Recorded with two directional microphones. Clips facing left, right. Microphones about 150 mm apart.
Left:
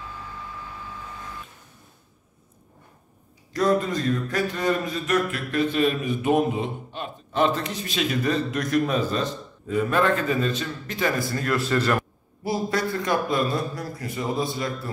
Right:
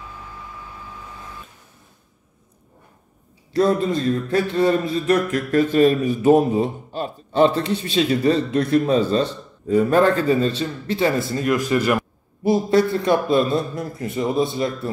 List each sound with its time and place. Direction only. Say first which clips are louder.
3.5 s a man's voice: right 4 dB; 25° right (ahead or behind)
12.4 s a man's voice: right 8 dB; 25° right (ahead or behind)